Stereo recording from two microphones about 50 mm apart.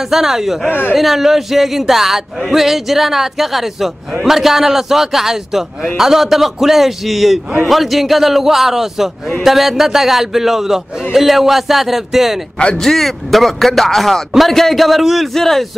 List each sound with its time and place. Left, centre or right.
0.1 s speech: centre
0.7 s speech: left
0.9 s speech: centre